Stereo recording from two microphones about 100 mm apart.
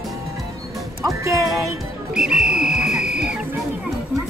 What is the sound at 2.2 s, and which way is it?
Whistle, 5° right (ahead or behind).